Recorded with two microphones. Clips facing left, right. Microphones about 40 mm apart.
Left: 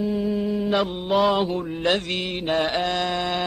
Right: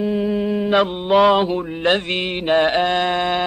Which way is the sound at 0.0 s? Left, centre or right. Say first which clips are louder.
Right 4 dB; right.